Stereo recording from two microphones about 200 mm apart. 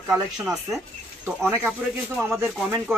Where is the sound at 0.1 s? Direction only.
10° right (ahead or behind).